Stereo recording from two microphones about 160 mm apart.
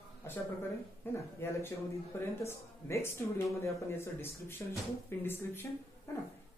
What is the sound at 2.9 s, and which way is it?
Speech, 15° left (ahead or behind).